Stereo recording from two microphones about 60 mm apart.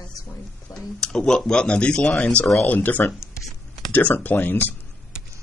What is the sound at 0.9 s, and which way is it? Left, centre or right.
Speech, centre.